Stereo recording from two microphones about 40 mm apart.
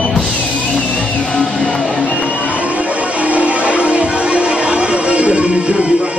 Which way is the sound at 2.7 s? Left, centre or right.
Right.